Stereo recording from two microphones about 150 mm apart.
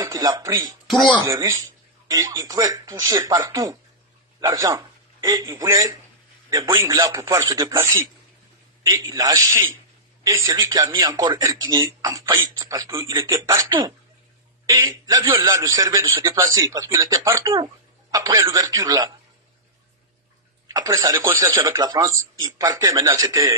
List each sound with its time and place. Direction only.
0.0 s a man's voice: 25° right (ahead or behind)
9.1 s speech: 25° right (ahead or behind)
20.6 s speech: 25° right (ahead or behind)